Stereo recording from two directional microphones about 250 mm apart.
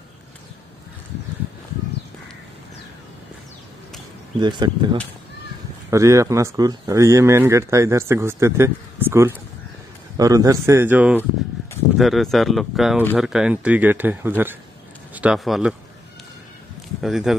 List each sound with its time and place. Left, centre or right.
4.4 s speech: centre
17.0 s speech: centre